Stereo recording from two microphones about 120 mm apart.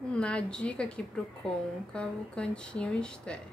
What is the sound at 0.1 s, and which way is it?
A woman's voice, 10° left (ahead or behind).